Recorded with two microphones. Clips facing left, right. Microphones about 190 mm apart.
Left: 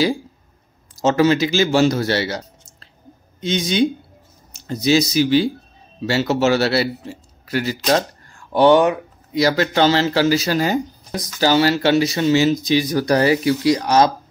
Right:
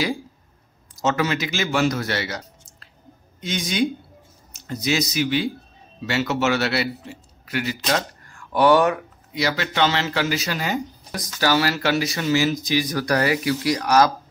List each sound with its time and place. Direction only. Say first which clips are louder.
1.0 s speech: left 7 dB; 30° left (ahead or behind)
9.3 s speech: left 7 dB; 40° left (ahead or behind)
11.1 s speech: left 4 dB; 25° left (ahead or behind)